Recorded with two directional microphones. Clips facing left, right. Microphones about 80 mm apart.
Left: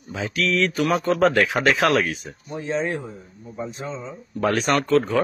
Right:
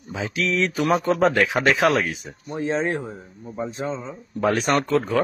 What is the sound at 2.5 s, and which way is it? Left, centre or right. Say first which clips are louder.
Speech: right 2 dB; right.